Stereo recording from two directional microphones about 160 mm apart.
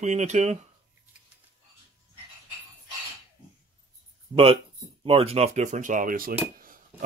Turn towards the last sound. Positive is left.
turn(degrees=-60)  # may be behind; listen again after turning